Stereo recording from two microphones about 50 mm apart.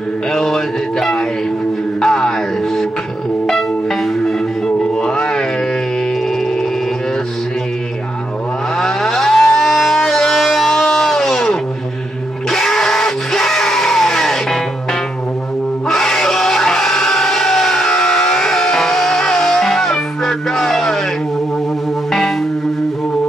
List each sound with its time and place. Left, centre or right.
0.3 s mantra: centre
2.0 s music: centre
4.9 s music: centre
8.7 s vehicle: centre
12.4 s music: centre
15.9 s music: centre